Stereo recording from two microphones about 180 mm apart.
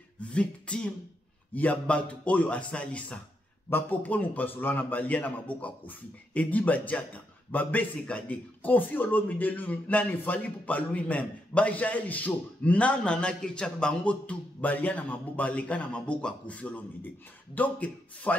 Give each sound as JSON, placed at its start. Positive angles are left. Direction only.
{"t": 0.2, "sound": "beatboxing", "side_deg": 5}
{"t": 1.5, "sound": "a man's voice", "side_deg": 10}